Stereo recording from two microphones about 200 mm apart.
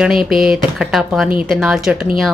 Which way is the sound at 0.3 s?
Centre (ahead or behind).